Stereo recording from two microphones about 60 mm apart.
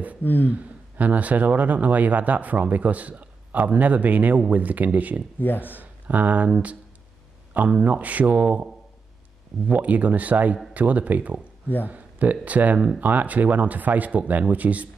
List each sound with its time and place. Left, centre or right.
0.2 s speech: left
0.5 s speech: right
5.4 s speech: left
5.7 s speech: right
8.4 s a man's voice: centre
9.7 s speech: right